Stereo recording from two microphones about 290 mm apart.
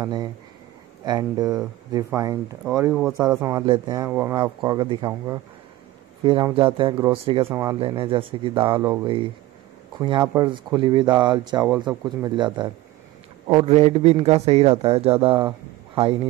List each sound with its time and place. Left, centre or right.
0.0 s a man's voice: centre